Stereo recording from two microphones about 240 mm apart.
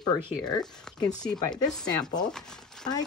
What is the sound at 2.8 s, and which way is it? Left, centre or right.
Speech, centre.